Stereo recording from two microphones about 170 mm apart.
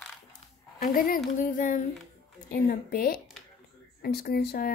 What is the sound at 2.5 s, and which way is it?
Speech, 60° left (ahead or behind).